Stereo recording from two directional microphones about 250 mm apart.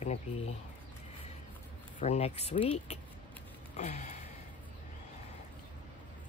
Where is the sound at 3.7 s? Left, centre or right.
Left.